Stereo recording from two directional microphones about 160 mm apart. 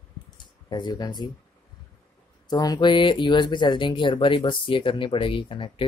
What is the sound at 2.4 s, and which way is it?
Speech, 25° left (ahead or behind).